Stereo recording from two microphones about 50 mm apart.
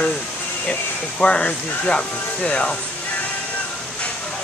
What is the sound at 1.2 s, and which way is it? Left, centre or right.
Speech, left.